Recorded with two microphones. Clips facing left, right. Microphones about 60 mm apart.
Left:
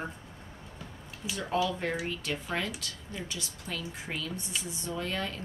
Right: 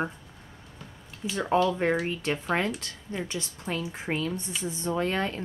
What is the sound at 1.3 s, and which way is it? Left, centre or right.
A woman's voice, right.